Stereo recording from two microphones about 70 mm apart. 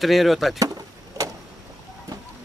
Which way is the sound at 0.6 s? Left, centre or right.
Right.